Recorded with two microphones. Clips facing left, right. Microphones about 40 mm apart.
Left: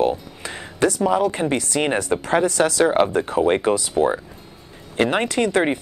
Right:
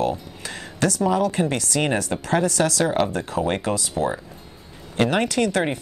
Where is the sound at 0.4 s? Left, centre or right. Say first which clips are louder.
Left 4 dB; left.